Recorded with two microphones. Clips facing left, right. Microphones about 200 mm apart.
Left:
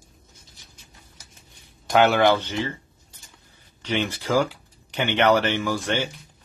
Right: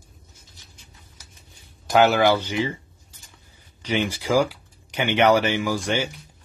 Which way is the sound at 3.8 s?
10° right (ahead or behind).